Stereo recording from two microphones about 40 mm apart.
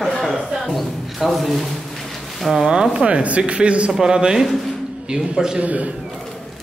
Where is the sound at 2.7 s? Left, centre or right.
Right.